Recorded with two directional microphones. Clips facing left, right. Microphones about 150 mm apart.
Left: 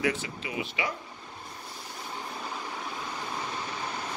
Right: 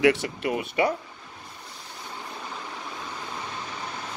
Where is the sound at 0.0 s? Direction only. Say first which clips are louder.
Right 9 dB; 65° right (ahead or behind); by 0.9 s 50° right (ahead or behind).